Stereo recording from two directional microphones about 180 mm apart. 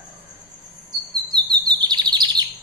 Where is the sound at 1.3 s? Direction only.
25° right (ahead or behind).